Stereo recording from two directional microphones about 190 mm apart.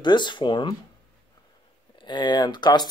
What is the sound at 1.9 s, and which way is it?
Speech, 25° left (ahead or behind).